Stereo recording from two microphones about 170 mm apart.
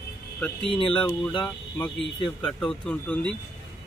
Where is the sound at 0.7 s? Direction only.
30° left (ahead or behind).